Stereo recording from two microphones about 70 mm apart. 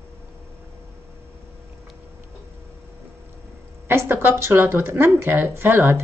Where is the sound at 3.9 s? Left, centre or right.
Right.